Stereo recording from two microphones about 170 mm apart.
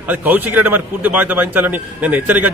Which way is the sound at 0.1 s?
10° right (ahead or behind).